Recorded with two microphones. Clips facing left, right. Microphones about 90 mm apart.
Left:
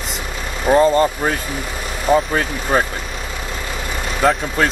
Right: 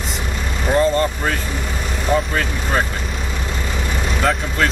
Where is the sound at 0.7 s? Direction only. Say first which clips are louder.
Left 3 dB; 20° left (ahead or behind).